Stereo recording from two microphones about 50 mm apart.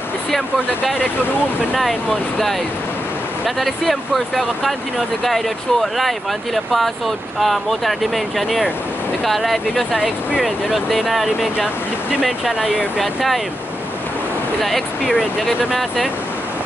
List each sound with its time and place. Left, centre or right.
1.8 s speech: centre
9.9 s speech: right
10.4 s speech: centre
12.5 s speech: centre
13.0 s speech: centre
14.6 s speech: centre